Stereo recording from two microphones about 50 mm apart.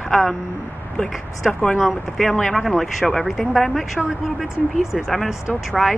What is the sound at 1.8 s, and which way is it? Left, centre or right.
Speech, centre.